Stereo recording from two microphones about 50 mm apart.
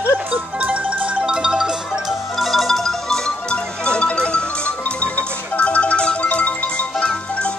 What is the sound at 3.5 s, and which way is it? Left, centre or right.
Music, centre.